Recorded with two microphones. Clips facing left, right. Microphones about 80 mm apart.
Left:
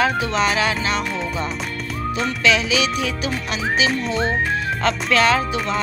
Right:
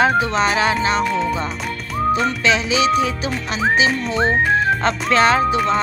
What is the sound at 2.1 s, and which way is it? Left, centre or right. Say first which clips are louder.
Speech: right 1 dB; right.